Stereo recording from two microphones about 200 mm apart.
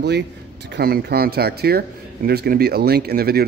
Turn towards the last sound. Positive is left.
turn(degrees=-50)  # may be behind; listen again after turning